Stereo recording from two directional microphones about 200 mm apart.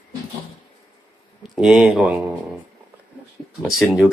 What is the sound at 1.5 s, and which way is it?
Speech, 5° right (ahead or behind).